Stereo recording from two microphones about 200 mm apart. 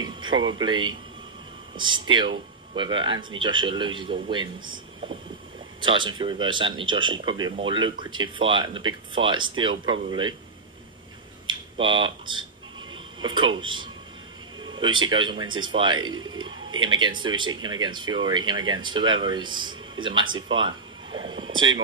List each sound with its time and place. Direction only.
0.0 s speech: 25° right (ahead or behind)
5.8 s speech: 25° right (ahead or behind)
11.4 s a sound: 25° right (ahead or behind)
13.2 s speech: 25° right (ahead or behind)